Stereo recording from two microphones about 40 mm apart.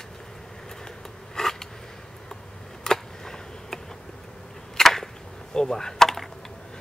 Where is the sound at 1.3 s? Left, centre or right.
Centre.